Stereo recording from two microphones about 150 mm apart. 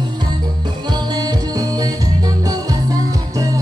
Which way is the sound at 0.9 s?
25° right (ahead or behind).